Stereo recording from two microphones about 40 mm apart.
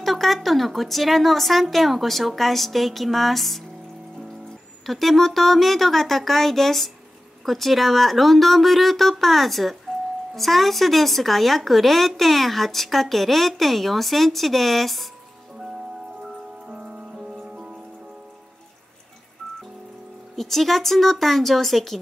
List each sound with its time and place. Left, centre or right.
0.0 s speech: centre
4.8 s speech: centre
16.6 s music: centre
19.4 s music: centre
20.3 s speech: centre